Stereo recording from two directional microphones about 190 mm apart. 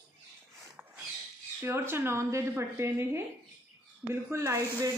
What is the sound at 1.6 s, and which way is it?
Speech, 15° right (ahead or behind).